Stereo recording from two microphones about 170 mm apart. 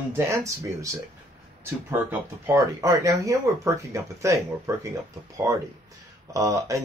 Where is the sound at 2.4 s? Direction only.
20° right (ahead or behind).